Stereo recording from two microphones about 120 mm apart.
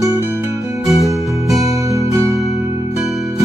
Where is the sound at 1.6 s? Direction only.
25° right (ahead or behind).